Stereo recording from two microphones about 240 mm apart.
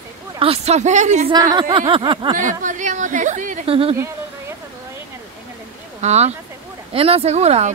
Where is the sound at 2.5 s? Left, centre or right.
Right.